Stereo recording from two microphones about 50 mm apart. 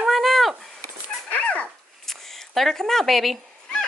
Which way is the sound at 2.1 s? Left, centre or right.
Centre.